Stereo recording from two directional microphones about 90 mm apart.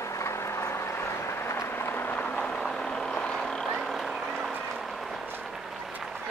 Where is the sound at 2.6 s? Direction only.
10° left (ahead or behind).